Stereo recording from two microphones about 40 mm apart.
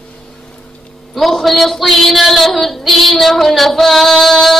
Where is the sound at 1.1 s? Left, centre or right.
Centre.